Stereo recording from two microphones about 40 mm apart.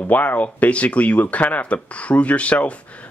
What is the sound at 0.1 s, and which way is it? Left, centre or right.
Speech, left.